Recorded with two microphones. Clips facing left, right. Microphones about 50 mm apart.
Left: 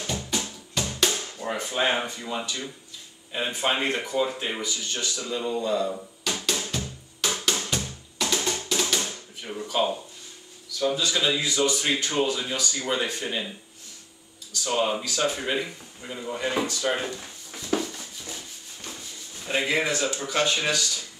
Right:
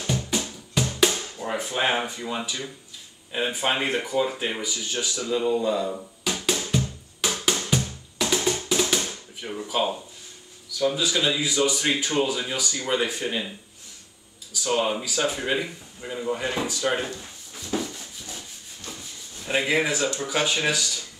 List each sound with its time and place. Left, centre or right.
0.0 s music: centre
3.3 s speech: centre
6.7 s music: centre
9.4 s speech: centre
14.5 s speech: centre
17.7 s rub: left
19.4 s speech: centre